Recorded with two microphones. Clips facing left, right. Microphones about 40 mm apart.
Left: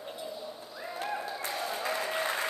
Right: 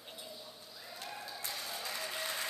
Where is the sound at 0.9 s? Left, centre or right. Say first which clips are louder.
Left 11 dB; left.